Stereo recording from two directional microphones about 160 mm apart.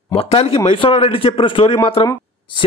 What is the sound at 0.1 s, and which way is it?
A man's voice, 35° left (ahead or behind).